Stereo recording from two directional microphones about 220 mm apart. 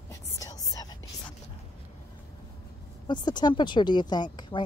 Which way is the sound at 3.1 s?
20° left (ahead or behind).